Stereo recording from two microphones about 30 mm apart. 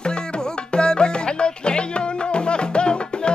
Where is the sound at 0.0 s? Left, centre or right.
Left.